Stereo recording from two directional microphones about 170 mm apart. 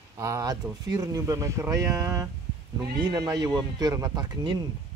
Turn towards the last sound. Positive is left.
turn(degrees=-25)  # may be behind; listen again after turning